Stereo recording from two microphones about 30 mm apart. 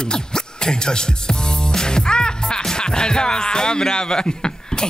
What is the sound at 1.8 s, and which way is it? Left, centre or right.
Music, left.